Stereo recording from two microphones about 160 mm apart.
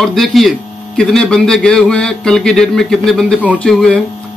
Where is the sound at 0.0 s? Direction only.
Centre (ahead or behind).